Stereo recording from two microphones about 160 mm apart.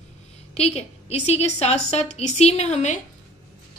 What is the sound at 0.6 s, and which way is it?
A woman's voice, 40° left (ahead or behind).